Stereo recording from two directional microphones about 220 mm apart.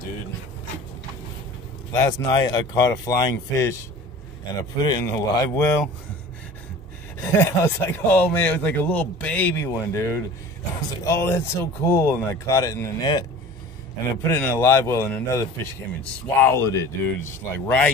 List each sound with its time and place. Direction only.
1.9 s speech: 15° left (ahead or behind)
7.2 s speech: 10° left (ahead or behind)
14.2 s speech: 10° left (ahead or behind)